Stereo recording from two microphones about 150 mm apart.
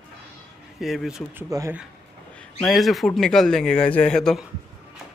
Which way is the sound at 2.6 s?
Centre (ahead or behind).